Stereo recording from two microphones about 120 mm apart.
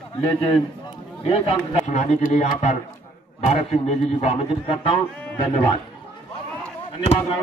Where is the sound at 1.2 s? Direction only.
55° left (ahead or behind).